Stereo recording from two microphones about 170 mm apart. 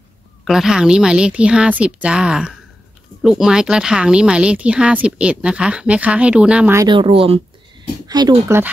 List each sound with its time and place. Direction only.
0.5 s speech: 5° right (ahead or behind)
6.8 s speech: 30° right (ahead or behind)